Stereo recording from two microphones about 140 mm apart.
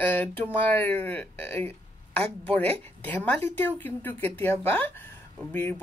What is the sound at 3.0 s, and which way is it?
Speech, 10° left (ahead or behind).